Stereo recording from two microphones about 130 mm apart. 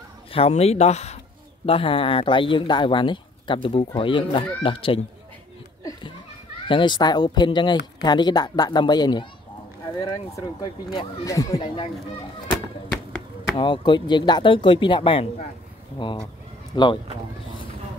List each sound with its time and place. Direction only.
0.3 s speech: 50° left (ahead or behind)
1.7 s speech: 45° left (ahead or behind)
6.7 s speech: 35° left (ahead or behind)
11.6 s speech: 45° left (ahead or behind)
12.9 s a sound: centre (ahead or behind)
13.6 s speech: 35° left (ahead or behind)
16.7 s speech: 35° left (ahead or behind)